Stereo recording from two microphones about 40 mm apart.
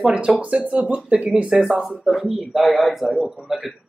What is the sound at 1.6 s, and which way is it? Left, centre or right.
Speech, centre.